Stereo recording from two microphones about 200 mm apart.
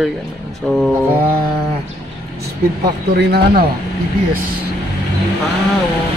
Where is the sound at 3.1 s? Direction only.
55° right (ahead or behind).